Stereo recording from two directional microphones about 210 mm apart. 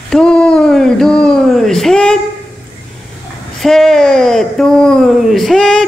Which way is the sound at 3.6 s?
Centre (ahead or behind).